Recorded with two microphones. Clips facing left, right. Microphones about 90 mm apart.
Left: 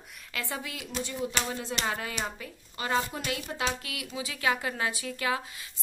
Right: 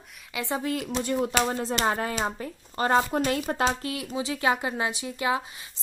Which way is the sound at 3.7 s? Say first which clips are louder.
Right 6 dB; 35° right (ahead or behind).